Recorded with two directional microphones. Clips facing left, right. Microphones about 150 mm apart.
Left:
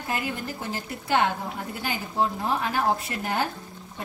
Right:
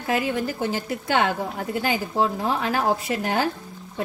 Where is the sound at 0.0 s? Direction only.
90° right.